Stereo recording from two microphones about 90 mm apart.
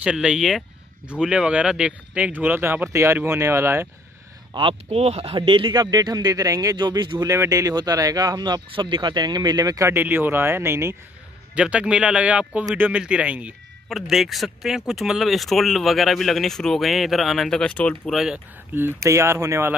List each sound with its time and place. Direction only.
0.0 s speech: 10° right (ahead or behind); by 3.9 s 30° right (ahead or behind)
4.6 s speech: 85° right; by 5.7 s 70° right (ahead or behind)
5.7 s speech: 45° right (ahead or behind)
7.2 s speech: 40° right (ahead or behind)
9.8 s speech: 25° right (ahead or behind)
11.5 s speech: 10° right (ahead or behind)
13.8 s speech: centre (ahead or behind)
18.1 s speech: 5° right (ahead or behind)
18.8 s speech: 30° right (ahead or behind)